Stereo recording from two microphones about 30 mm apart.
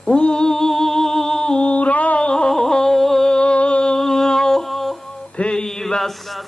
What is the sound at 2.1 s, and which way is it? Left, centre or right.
Music, left.